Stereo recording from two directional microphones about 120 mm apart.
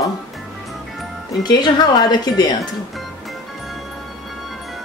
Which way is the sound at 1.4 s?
35° left (ahead or behind).